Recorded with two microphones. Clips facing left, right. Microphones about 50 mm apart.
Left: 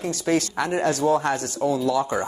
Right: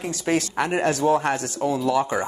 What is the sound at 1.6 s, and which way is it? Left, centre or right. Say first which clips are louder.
Speech: left 1 dB; right.